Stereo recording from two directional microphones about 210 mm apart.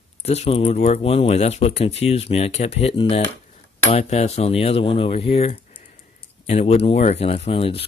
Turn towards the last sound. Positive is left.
turn(degrees=25)  # may be behind; listen again after turning